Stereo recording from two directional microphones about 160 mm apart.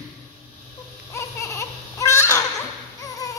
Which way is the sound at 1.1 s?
15° left (ahead or behind).